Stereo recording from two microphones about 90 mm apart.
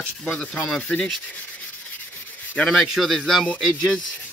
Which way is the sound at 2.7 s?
Centre (ahead or behind).